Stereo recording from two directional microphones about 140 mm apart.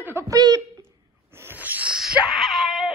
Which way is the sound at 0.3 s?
25° right (ahead or behind).